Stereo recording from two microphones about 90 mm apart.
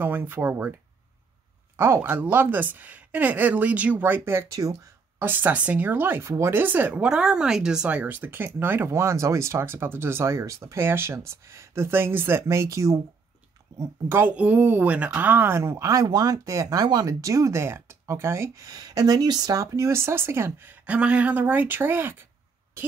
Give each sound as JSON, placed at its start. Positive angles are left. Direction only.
{"t": 0.0, "sound": "speech", "side_deg": -25}
{"t": 1.8, "sound": "speech", "side_deg": -30}
{"t": 5.2, "sound": "speech", "side_deg": -20}
{"t": 13.7, "sound": "speech", "side_deg": -25}